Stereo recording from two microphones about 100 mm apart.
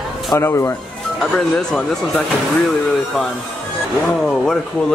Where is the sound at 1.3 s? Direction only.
10° left (ahead or behind).